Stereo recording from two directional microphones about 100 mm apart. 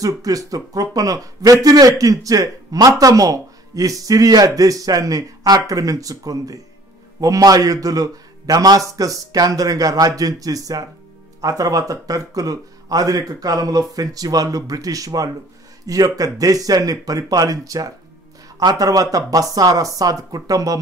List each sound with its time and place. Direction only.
0.0 s a man's voice: 35° right (ahead or behind)